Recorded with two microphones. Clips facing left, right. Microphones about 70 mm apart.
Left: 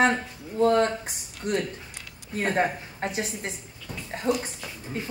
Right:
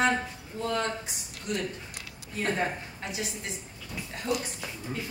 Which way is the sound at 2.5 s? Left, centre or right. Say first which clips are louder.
Left 5 dB; left.